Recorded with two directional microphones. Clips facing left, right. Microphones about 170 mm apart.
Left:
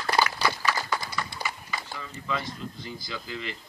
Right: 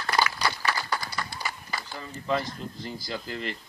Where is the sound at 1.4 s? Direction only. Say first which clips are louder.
Even; 40° right (ahead or behind).